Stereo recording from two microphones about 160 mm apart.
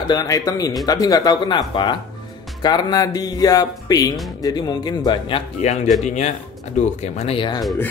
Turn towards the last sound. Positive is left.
turn(degrees=30)  # may be behind; listen again after turning